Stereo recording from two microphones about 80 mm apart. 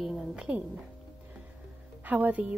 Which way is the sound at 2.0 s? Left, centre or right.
Right.